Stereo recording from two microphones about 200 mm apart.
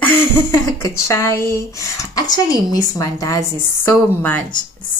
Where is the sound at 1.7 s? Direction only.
15° left (ahead or behind).